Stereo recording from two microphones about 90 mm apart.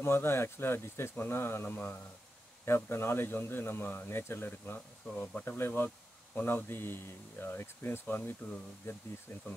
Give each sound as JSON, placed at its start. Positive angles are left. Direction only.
{"t": 0.0, "sound": "speech", "side_deg": 25}